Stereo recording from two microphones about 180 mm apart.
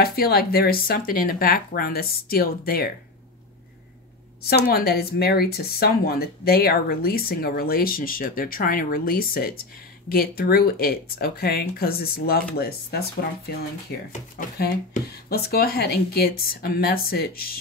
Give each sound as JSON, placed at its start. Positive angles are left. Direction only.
{"t": 0.0, "sound": "speech", "side_deg": 55}
{"t": 4.4, "sound": "speech", "side_deg": 60}